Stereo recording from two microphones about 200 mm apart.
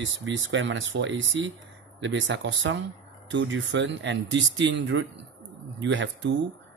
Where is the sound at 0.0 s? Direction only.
70° right (ahead or behind).